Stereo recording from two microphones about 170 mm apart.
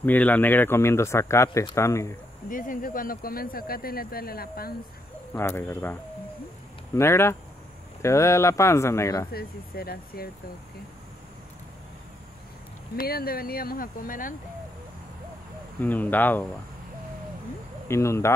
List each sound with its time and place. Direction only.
0.0 s speech: 10° left (ahead or behind)
2.5 s speech: 50° left (ahead or behind)
5.3 s speech: 15° left (ahead or behind)
7.0 s speech: 15° left (ahead or behind)
9.3 s speech: 65° left (ahead or behind)
12.9 s speech: 60° left (ahead or behind)
15.8 s speech: 10° left (ahead or behind)
17.8 s speech: 15° left (ahead or behind)